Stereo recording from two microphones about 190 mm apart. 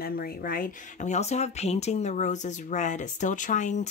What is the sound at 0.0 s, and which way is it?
Speech, 50° left (ahead or behind).